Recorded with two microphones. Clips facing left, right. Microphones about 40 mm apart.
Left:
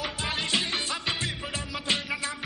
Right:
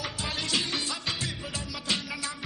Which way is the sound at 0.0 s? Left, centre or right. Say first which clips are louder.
Left 3 dB; left.